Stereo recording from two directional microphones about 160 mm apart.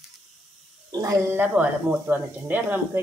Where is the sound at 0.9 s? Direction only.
20° right (ahead or behind).